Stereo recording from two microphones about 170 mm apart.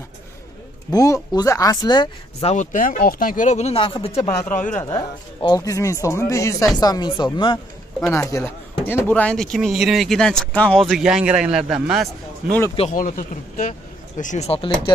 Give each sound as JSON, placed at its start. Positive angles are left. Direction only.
{"t": 0.9, "sound": "speech", "side_deg": 20}
{"t": 2.4, "sound": "speech", "side_deg": 45}
{"t": 4.5, "sound": "speech", "side_deg": 50}
{"t": 4.8, "sound": "speech", "side_deg": 25}
{"t": 8.1, "sound": "speech", "side_deg": 15}
{"t": 12.9, "sound": "speech", "side_deg": 55}